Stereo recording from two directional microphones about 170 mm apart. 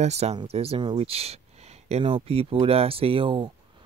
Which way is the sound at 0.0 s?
40° right (ahead or behind).